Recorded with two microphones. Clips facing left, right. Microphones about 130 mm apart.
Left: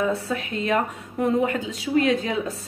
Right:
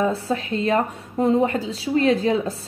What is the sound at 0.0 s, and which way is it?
Speech, 30° right (ahead or behind).